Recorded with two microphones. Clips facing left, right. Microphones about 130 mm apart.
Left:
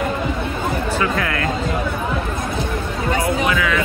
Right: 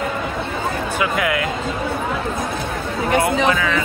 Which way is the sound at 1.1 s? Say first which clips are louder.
Right 1 dB; 10° right (ahead or behind).